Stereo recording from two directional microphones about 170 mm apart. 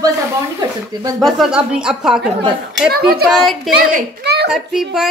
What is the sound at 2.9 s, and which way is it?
Speech, 65° right (ahead or behind).